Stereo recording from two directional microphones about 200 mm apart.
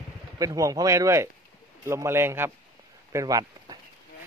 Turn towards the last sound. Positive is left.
turn(degrees=-20)  # may be behind; listen again after turning